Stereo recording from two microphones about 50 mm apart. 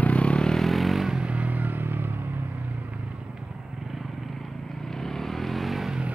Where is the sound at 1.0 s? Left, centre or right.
Right.